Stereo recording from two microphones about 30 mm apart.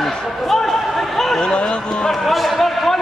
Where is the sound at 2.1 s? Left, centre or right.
Centre.